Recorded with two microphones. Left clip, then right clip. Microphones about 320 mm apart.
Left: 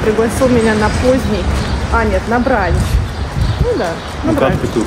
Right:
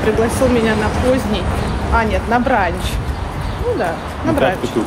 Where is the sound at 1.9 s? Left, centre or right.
Centre.